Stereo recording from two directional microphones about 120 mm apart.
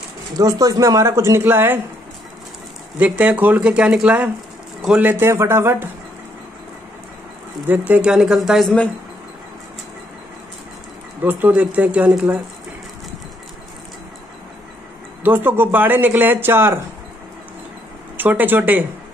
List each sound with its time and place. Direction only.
0.4 s speech: 30° right (ahead or behind)
3.0 s a man's voice: 10° right (ahead or behind)
7.6 s speech: 15° right (ahead or behind)
11.2 s a man's voice: 15° right (ahead or behind)
15.2 s a man's voice: 15° right (ahead or behind)
18.1 s speech: 15° right (ahead or behind)